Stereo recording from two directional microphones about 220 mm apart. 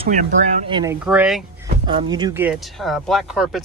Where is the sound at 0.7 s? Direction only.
15° right (ahead or behind).